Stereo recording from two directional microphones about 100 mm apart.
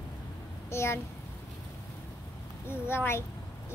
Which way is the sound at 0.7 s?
25° left (ahead or behind).